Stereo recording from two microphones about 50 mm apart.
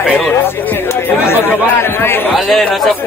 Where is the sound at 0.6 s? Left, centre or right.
Left.